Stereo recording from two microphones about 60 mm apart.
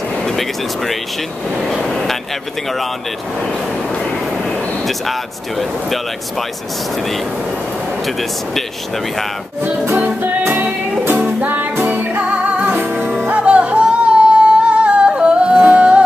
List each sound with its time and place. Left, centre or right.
0.2 s speech: centre
10.2 s music: right
13.3 s yodeling: right
15.6 s music: right